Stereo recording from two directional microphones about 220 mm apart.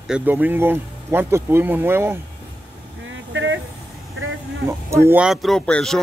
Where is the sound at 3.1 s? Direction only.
55° right (ahead or behind).